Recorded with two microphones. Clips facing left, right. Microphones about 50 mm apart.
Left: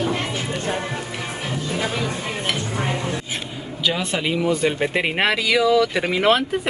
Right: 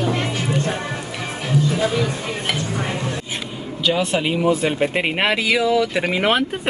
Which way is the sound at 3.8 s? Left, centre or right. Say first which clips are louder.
Right 3 dB; centre.